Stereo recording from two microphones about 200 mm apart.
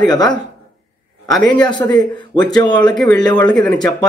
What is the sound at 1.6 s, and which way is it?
Speech, 20° left (ahead or behind).